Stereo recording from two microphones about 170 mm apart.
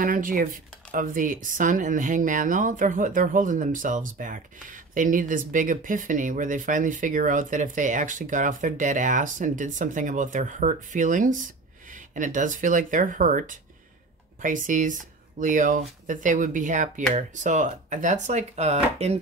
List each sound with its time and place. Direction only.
0.0 s speech: 55° right (ahead or behind)